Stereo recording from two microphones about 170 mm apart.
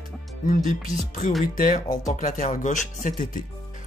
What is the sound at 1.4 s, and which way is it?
Speech, 55° left (ahead or behind).